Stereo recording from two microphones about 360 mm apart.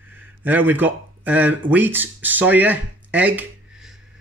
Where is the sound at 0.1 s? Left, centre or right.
Centre.